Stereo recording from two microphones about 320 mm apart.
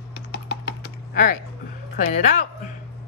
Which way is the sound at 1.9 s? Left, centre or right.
Left.